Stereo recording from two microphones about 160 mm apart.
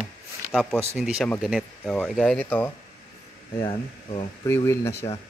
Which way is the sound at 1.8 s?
5° left (ahead or behind).